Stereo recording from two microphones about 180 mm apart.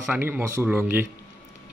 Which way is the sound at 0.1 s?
10° right (ahead or behind).